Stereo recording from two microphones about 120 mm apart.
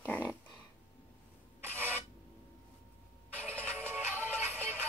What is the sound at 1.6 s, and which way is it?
Filing, 15° right (ahead or behind).